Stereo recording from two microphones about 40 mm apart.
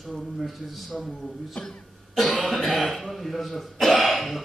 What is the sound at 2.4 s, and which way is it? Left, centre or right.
A man's voice, centre.